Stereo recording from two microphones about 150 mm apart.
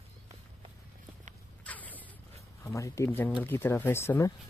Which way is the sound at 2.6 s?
20° left (ahead or behind).